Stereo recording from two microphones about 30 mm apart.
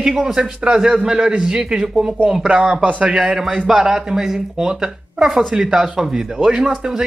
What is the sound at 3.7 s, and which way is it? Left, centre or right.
Speech, right.